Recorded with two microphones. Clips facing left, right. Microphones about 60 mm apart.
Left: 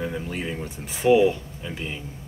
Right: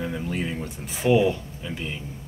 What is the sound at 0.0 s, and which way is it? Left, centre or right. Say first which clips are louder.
Speech: right 1 dB; centre.